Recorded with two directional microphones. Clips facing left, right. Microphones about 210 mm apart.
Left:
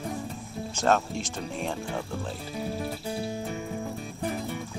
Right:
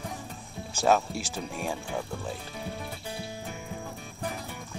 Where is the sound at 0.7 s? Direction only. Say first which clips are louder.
Right 1 dB; 10° right (ahead or behind).